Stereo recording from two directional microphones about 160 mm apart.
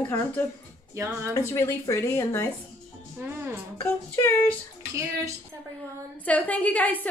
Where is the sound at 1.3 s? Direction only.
15° left (ahead or behind).